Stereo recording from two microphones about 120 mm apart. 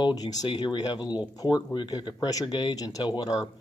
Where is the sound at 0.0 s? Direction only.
35° left (ahead or behind).